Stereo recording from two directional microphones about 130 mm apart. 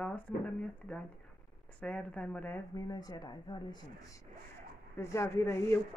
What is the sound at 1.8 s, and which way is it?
Speech, 10° left (ahead or behind).